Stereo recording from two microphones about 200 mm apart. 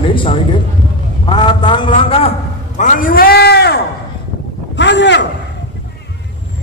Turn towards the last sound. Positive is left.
turn(degrees=60)  # may be behind; listen again after turning